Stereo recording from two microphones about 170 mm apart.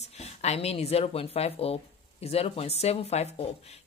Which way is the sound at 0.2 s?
40° left (ahead or behind).